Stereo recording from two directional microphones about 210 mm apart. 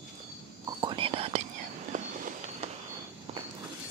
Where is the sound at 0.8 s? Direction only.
25° right (ahead or behind).